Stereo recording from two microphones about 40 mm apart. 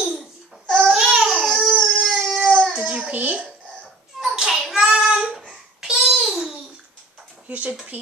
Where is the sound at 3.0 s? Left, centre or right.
Right.